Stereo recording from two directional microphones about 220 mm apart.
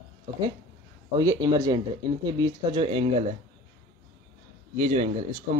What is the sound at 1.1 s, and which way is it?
Speech, 20° right (ahead or behind).